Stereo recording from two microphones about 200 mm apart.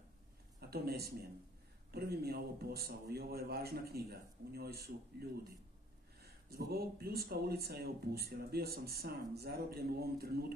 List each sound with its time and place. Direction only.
0.6 s speech: 50° right (ahead or behind)
6.2 s speech: 50° right (ahead or behind)